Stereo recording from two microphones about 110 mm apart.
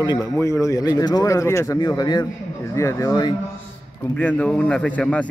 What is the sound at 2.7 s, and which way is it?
Speech, 25° left (ahead or behind).